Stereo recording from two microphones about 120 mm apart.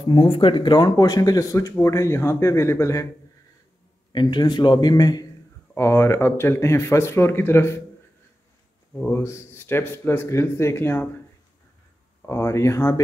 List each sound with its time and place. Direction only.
0.0 s speech: 45° left (ahead or behind); by 3.1 s 25° left (ahead or behind)
4.1 s a man's voice: 40° left (ahead or behind)
5.8 s speech: 20° left (ahead or behind)
9.0 s speech: 25° left (ahead or behind)
12.3 s speech: 25° left (ahead or behind)